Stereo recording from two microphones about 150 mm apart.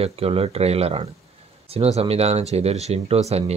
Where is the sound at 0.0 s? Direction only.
40° right (ahead or behind).